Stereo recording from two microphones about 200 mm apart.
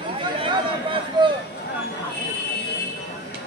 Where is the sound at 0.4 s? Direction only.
25° right (ahead or behind).